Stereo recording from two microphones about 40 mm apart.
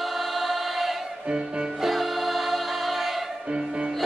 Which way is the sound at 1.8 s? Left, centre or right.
Centre.